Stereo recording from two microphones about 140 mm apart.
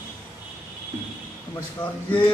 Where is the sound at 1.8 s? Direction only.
35° left (ahead or behind).